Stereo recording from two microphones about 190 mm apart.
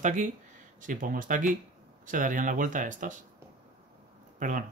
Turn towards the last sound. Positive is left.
turn(degrees=-45)  # may be behind; listen again after turning